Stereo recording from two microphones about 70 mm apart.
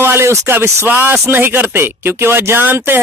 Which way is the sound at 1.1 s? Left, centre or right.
Right.